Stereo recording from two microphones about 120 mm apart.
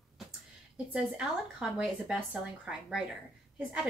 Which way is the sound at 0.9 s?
5° right (ahead or behind).